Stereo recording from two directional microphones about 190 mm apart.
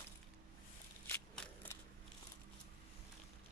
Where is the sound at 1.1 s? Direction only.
10° left (ahead or behind).